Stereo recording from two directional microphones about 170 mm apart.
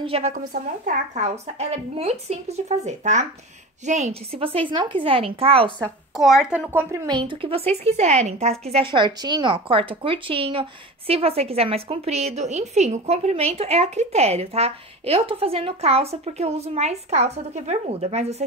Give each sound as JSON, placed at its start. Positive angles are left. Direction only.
{"t": 0.0, "sound": "a woman's voice", "side_deg": -35}
{"t": 0.3, "sound": "speech", "side_deg": -50}
{"t": 5.8, "sound": "a woman's voice", "side_deg": 0}
{"t": 6.7, "sound": "a woman's voice", "side_deg": -15}
{"t": 7.1, "sound": "speech", "side_deg": -30}